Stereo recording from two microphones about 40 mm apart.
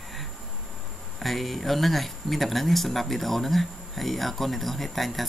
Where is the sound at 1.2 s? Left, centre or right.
Centre.